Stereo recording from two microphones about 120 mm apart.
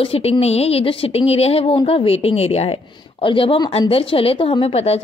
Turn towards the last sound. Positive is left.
turn(degrees=55)  # may be behind; listen again after turning